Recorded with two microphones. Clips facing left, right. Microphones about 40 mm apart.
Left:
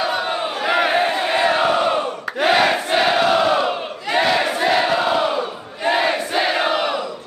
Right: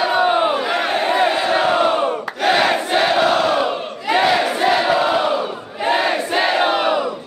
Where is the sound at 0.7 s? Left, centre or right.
Centre.